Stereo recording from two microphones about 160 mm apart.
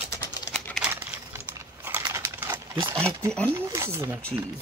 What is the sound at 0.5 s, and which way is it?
Crumpling, centre (ahead or behind).